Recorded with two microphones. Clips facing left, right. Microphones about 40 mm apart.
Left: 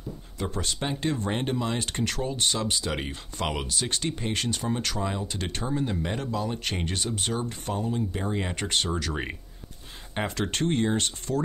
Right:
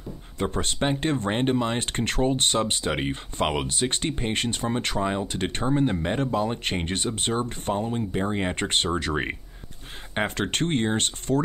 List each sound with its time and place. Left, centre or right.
0.4 s speech: right
9.1 s speech: centre
10.1 s speech: right